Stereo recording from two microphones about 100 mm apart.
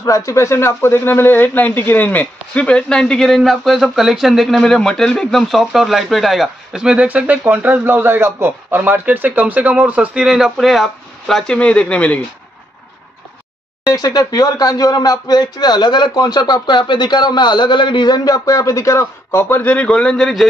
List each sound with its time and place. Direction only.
0.0 s speech: 35° left (ahead or behind); by 12.2 s 15° left (ahead or behind)
13.8 s speech: 40° left (ahead or behind); by 20.4 s 5° left (ahead or behind)